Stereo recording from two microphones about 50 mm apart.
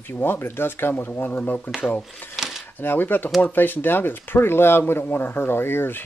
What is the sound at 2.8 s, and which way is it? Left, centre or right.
Speech, left.